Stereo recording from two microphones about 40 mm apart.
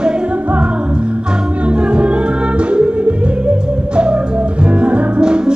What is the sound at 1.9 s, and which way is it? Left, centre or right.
Music, right.